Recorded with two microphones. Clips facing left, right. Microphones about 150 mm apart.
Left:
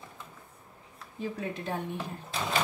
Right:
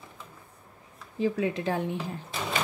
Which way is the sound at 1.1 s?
90° right.